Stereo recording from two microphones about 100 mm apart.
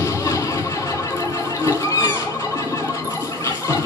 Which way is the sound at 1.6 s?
30° left (ahead or behind).